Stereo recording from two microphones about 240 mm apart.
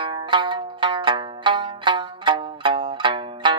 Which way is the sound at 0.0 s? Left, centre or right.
Centre.